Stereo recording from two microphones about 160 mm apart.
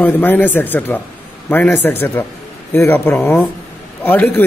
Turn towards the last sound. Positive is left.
turn(degrees=10)  # may be behind; listen again after turning